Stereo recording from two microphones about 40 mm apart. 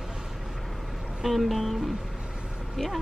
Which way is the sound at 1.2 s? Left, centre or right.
Centre.